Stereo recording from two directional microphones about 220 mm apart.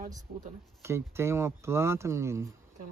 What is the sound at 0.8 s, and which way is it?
Speech, 10° right (ahead or behind).